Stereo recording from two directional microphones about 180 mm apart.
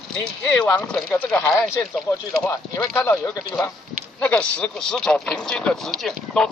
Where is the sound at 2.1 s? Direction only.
15° left (ahead or behind); by 6.5 s centre (ahead or behind).